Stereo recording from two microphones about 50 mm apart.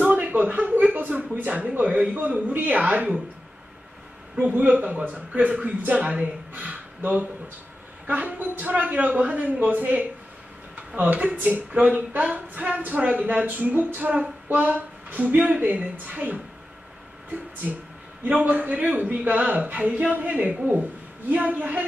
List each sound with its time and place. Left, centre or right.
0.0 s speech: right
4.4 s speech: right
18.2 s speech: right